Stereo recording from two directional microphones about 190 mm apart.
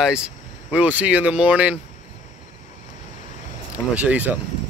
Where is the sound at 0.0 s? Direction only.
5° right (ahead or behind).